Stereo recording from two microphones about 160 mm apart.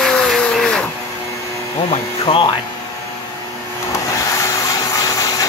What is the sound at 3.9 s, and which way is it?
Vehicle, 20° left (ahead or behind).